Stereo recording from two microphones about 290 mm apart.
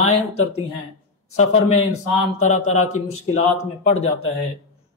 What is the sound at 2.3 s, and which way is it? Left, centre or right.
Speech, left.